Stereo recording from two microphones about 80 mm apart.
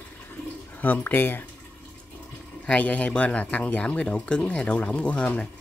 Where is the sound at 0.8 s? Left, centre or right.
Left.